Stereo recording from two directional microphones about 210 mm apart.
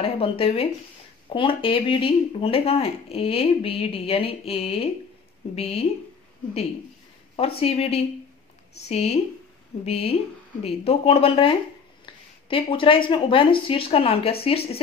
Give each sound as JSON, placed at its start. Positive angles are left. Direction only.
{"t": 0.0, "sound": "speech", "side_deg": 25}
{"t": 7.3, "sound": "speech", "side_deg": 25}
{"t": 12.1, "sound": "a sound", "side_deg": 25}
{"t": 12.4, "sound": "speech", "side_deg": 25}